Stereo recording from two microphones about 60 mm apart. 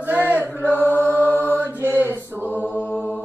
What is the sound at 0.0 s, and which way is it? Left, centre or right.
Chant, right.